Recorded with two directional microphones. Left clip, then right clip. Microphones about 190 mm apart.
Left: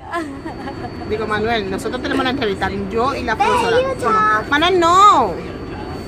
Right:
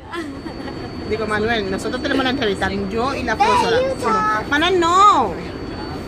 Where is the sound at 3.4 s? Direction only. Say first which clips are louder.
Even; 40° left (ahead or behind).